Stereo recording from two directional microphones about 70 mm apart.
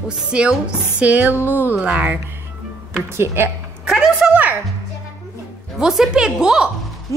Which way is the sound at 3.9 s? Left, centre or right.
Centre.